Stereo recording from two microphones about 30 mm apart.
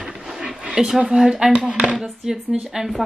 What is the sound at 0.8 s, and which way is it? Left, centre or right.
A woman's voice, right.